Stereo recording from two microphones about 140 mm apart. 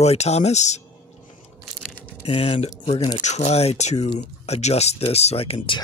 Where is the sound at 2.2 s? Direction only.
45° left (ahead or behind).